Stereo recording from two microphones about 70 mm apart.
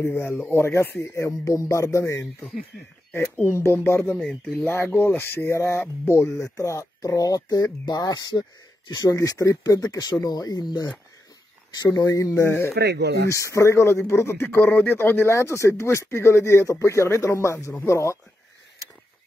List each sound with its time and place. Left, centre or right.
0.0 s a man's voice: left
3.1 s speech: left
3.4 s a man's voice: left
4.2 s speech: centre
4.6 s a man's voice: left
4.8 s a man's voice: left
9.1 s speech: left
9.7 s speech: left
12.0 s speech: left
12.4 s a man's voice: left